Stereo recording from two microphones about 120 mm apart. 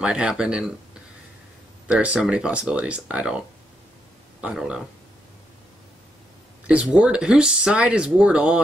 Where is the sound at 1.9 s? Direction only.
10° right (ahead or behind).